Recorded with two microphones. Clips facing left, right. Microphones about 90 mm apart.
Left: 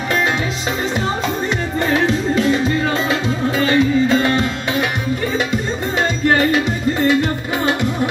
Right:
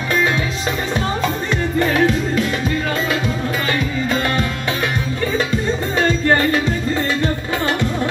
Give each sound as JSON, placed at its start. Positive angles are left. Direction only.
{"t": 3.1, "sound": "music", "side_deg": 25}
{"t": 6.0, "sound": "music", "side_deg": 15}